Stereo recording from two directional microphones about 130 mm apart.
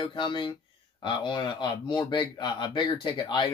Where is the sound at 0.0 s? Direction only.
40° left (ahead or behind).